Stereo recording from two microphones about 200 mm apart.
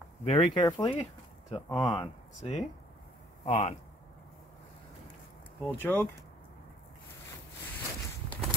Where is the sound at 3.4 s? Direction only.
35° left (ahead or behind).